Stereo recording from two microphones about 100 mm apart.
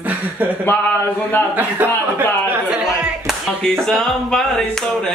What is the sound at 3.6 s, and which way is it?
Speech, 5° left (ahead or behind).